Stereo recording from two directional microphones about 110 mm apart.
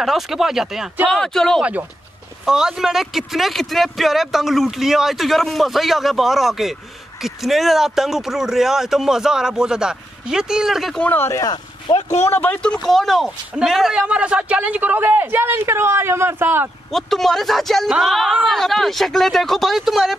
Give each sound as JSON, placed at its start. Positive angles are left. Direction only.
{"t": 0.0, "sound": "speech", "side_deg": -5}
{"t": 1.6, "sound": "a man's voice", "side_deg": -15}
{"t": 11.0, "sound": "speech", "side_deg": 15}
{"t": 11.3, "sound": "speech", "side_deg": 40}
{"t": 12.3, "sound": "a man's voice", "side_deg": 15}
{"t": 16.9, "sound": "speech", "side_deg": 0}